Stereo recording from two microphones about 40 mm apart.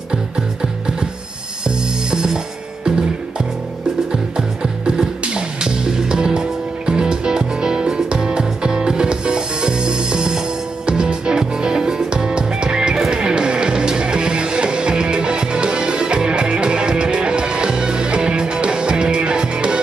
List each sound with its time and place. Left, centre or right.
0.1 s music: right
2.0 s music: centre